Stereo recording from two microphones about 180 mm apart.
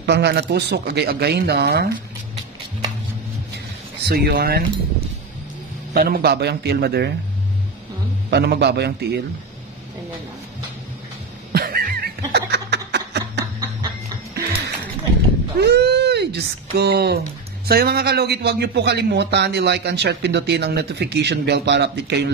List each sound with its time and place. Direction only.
0.0 s speech: 70° right (ahead or behind)
3.5 s vehicle: 65° right (ahead or behind)
5.9 s a man's voice: 60° right (ahead or behind)
8.3 s speech: 65° right (ahead or behind)
11.5 s snicker: 55° right (ahead or behind); by 13.5 s 70° right (ahead or behind)
15.5 s speech: 65° right (ahead or behind)